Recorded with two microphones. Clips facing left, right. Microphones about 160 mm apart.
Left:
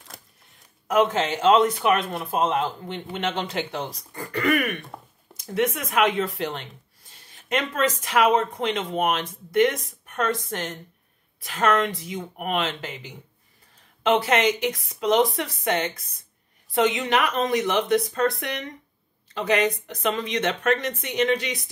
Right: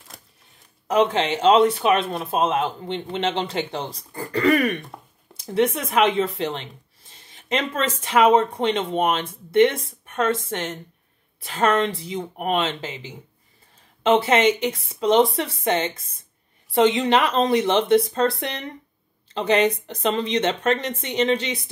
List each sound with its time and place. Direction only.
1.2 s speech: 25° right (ahead or behind)
14.0 s speech: 25° right (ahead or behind)